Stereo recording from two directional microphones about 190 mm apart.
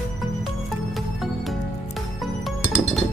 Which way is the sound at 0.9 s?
Centre (ahead or behind).